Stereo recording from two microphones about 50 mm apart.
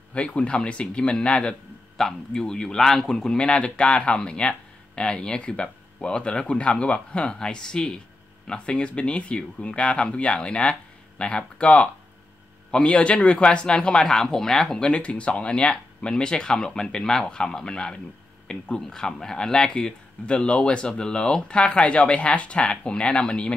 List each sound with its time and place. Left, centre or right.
0.1 s speech: left
14.9 s speech: left